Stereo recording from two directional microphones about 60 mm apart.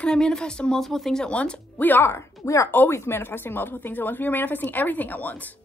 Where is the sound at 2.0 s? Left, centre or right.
Left.